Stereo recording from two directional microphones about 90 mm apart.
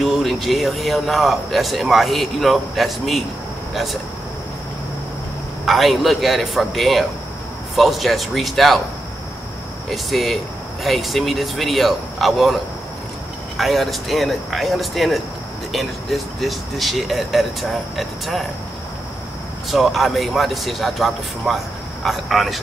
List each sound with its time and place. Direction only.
0.0 s speech: centre (ahead or behind)
5.7 s speech: centre (ahead or behind)
9.8 s speech: centre (ahead or behind)
13.6 s speech: centre (ahead or behind)
19.7 s speech: centre (ahead or behind)